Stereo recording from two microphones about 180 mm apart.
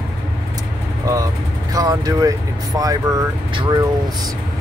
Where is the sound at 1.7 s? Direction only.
20° right (ahead or behind).